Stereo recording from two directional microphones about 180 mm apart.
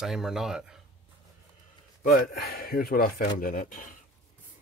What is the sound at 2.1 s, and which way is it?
Speech, 55° left (ahead or behind).